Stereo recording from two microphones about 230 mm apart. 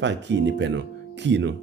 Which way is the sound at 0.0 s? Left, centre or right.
Right.